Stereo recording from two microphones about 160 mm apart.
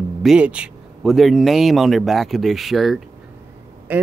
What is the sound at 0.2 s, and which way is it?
Speech, 5° right (ahead or behind).